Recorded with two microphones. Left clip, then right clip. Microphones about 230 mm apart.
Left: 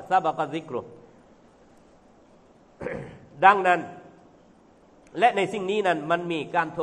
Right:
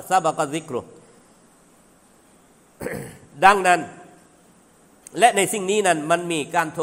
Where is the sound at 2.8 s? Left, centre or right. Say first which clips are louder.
Right 3 dB; right.